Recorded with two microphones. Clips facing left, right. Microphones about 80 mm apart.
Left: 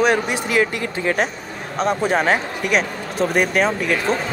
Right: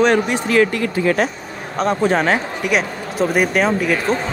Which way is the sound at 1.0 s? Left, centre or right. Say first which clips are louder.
Right 2 dB; left.